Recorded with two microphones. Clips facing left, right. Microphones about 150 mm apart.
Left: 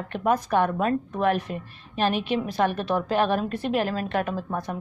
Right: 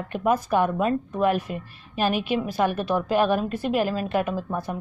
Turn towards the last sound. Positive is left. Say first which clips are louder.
# right 1 dB
turn(degrees=-5)  # may be behind; listen again after turning